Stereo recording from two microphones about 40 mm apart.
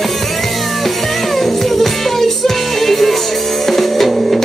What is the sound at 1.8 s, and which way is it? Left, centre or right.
Music, centre.